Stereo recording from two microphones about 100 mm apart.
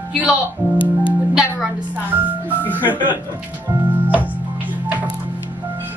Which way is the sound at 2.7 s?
20° right (ahead or behind).